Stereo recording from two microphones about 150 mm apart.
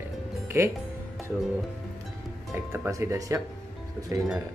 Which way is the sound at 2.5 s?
20° right (ahead or behind).